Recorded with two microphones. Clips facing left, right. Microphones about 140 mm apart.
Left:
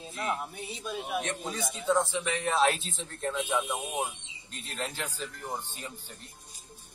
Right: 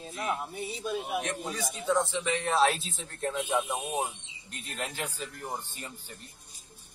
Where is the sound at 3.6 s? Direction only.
15° right (ahead or behind).